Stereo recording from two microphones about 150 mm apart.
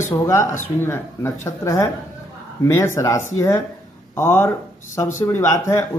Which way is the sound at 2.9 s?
20° left (ahead or behind).